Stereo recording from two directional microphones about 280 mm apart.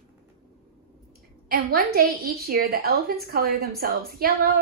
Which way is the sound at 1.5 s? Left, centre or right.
Right.